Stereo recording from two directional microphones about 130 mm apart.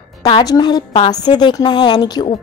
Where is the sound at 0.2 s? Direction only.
30° left (ahead or behind).